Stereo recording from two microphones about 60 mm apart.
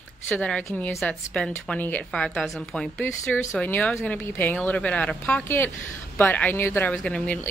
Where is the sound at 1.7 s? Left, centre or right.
Left.